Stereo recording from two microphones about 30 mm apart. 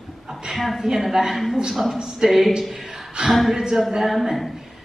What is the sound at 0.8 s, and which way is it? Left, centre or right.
Speech, centre.